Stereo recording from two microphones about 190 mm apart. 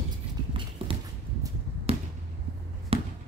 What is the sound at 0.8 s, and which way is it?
Clip-clop, 30° right (ahead or behind).